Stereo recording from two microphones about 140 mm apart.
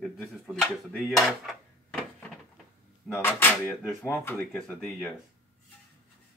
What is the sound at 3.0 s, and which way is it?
Music, 15° left (ahead or behind).